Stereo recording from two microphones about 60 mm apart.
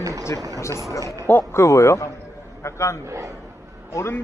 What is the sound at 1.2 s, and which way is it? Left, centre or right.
A man's voice, left.